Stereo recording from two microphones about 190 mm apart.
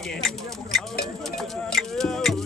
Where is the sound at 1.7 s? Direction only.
Centre (ahead or behind).